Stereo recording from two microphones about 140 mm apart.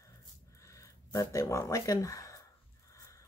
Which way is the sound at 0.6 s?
20° left (ahead or behind).